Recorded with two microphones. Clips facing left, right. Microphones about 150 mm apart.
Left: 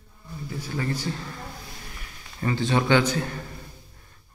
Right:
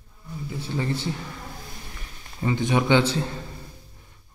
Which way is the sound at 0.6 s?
25° right (ahead or behind).